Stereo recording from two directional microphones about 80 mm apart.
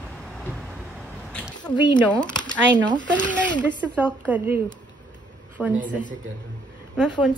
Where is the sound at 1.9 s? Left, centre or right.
Left.